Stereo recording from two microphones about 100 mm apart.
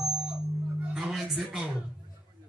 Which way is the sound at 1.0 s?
5° right (ahead or behind).